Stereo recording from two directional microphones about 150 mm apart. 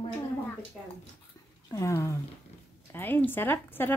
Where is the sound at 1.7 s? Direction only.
20° left (ahead or behind).